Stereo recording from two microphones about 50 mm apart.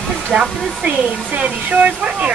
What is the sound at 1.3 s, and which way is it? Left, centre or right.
Speech, right.